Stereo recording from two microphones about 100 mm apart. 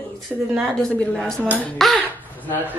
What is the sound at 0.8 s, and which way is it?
A woman's voice, 5° left (ahead or behind).